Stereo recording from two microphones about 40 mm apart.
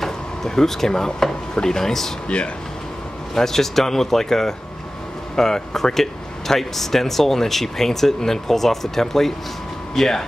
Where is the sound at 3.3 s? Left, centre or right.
Centre.